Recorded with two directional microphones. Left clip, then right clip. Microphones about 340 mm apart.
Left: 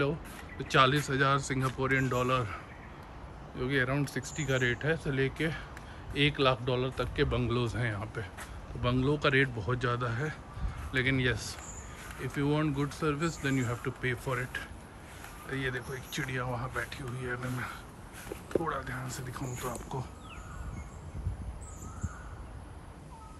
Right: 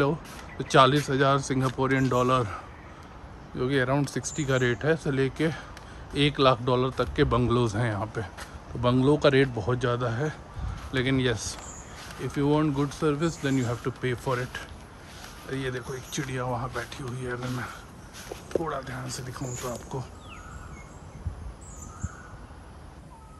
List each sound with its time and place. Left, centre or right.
0.6 s speech: centre